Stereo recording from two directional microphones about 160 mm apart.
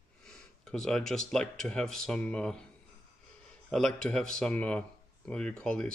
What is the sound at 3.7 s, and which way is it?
Speech, 5° left (ahead or behind).